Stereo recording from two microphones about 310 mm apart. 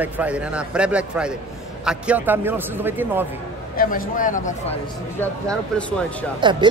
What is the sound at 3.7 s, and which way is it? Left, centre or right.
Speech, left.